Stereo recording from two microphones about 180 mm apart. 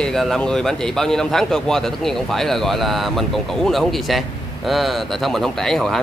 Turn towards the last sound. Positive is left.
turn(degrees=0)  # may be behind; listen again after turning